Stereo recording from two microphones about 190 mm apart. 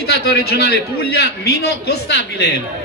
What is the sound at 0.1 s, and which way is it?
A man's voice, 55° left (ahead or behind).